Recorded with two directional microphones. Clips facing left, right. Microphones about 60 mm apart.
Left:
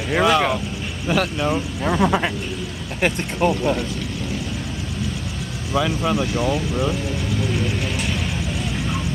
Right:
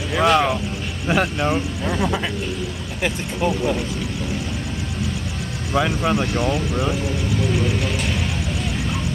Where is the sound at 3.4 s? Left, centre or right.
Left.